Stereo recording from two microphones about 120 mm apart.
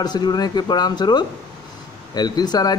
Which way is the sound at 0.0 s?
35° left (ahead or behind).